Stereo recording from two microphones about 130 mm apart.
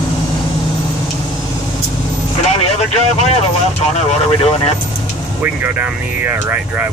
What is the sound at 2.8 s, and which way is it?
Speech, 55° left (ahead or behind).